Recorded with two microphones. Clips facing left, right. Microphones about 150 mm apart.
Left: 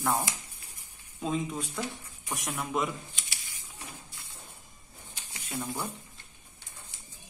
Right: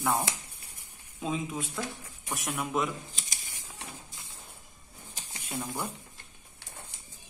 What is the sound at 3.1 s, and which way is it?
Computer keyboard, 40° right (ahead or behind).